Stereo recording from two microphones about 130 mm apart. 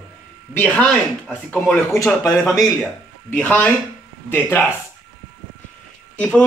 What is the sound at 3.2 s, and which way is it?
Speech, 15° left (ahead or behind).